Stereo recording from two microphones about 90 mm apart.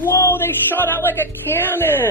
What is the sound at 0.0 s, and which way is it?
Speech, 25° left (ahead or behind).